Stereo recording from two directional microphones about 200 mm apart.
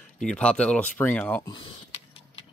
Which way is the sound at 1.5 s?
25° left (ahead or behind).